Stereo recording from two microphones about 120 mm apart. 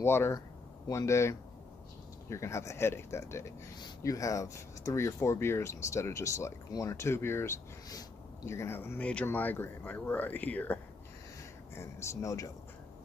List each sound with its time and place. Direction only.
0.0 s speech: 20° left (ahead or behind)